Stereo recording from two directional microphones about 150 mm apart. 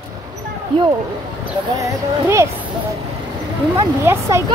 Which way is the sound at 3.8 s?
20° right (ahead or behind).